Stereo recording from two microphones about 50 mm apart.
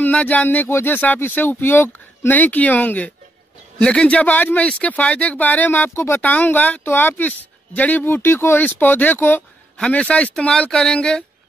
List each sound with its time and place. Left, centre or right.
0.0 s speech: left
0.7 s speech: left
3.8 s speech: left
6.2 s speech: left
8.1 s speech: left
9.8 s speech: left
10.7 s speech: centre